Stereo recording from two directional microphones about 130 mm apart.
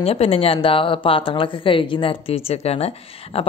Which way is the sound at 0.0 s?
50° left (ahead or behind).